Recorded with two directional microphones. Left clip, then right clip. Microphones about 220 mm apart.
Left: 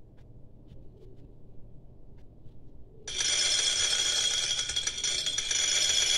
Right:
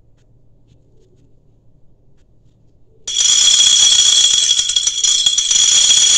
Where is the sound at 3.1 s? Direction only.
5° right (ahead or behind).